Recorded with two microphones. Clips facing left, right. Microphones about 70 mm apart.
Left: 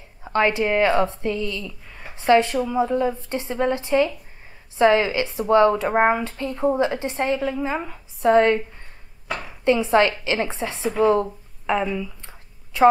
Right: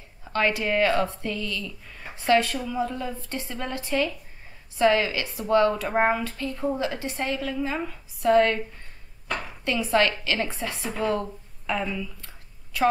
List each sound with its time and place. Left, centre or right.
0.2 s a woman's voice: left
9.7 s a woman's voice: left